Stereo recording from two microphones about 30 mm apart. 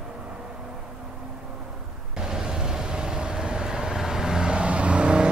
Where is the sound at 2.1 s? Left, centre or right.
Right.